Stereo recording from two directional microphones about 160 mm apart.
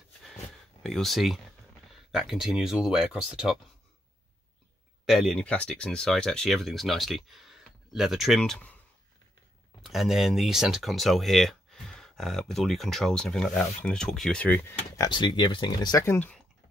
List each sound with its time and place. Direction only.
0.8 s speech: centre (ahead or behind)
5.0 s speech: centre (ahead or behind)
9.8 s speech: centre (ahead or behind)
15.0 s speech: 30° left (ahead or behind); by 16.3 s 15° left (ahead or behind)